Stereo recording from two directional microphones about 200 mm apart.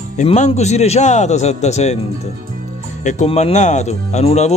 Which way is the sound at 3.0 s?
35° left (ahead or behind).